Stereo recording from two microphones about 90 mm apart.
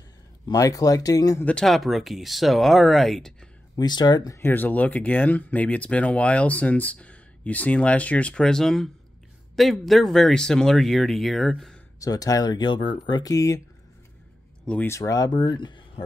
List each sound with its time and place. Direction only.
0.5 s speech: 40° left (ahead or behind)
1.4 s speech: 10° left (ahead or behind)
3.7 s speech: 50° left (ahead or behind)
4.4 s speech: 20° left (ahead or behind); by 11.8 s 5° left (ahead or behind)
12.0 s speech: 40° left (ahead or behind)
14.9 s speech: 35° left (ahead or behind); by 15.8 s 60° left (ahead or behind)